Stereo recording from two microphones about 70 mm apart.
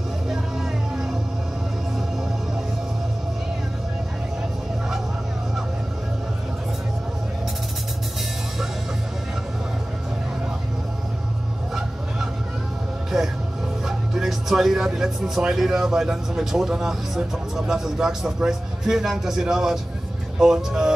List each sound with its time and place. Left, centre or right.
0.3 s music: centre
13.8 s speech: centre